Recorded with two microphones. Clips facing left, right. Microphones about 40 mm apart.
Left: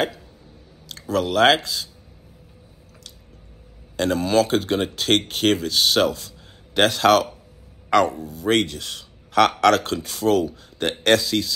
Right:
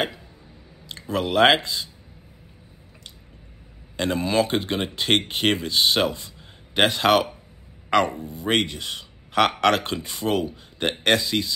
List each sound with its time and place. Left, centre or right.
0.8 s speech: right
3.9 s a man's voice: centre